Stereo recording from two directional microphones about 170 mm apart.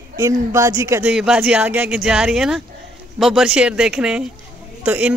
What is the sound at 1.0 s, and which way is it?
Speech, 5° right (ahead or behind).